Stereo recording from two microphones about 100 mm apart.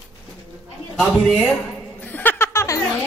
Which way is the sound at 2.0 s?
20° left (ahead or behind).